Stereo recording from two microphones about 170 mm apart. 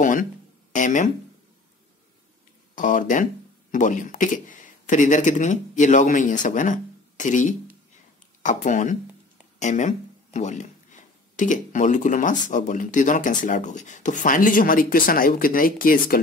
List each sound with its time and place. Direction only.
0.0 s speech: 50° left (ahead or behind)
2.7 s speech: 50° left (ahead or behind)